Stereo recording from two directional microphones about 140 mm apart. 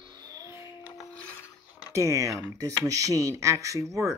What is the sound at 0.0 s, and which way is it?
Child singing, 30° right (ahead or behind).